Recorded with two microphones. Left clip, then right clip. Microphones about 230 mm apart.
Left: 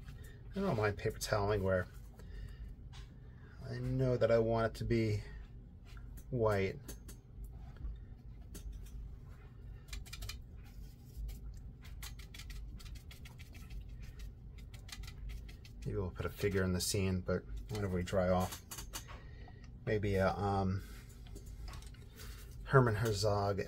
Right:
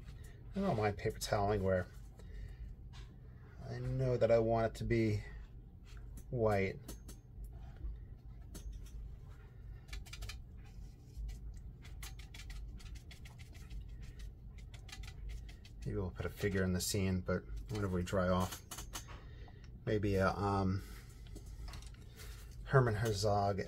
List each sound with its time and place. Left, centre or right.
0.5 s speech: centre
3.6 s speech: centre
6.3 s speech: centre
12.3 s a sound: centre
15.8 s speech: centre
19.8 s speech: centre
22.7 s speech: centre